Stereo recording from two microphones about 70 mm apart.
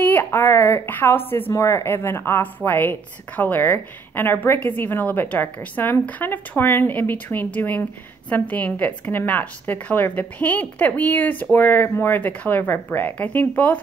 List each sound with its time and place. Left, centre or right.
0.0 s a sound: left
0.3 s a woman's voice: left
1.5 s a woman's voice: left